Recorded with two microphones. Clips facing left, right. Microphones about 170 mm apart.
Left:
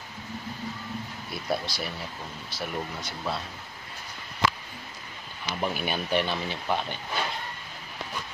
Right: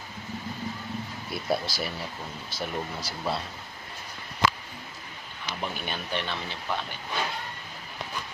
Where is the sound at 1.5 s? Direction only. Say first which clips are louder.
Right 1 dB; centre (ahead or behind).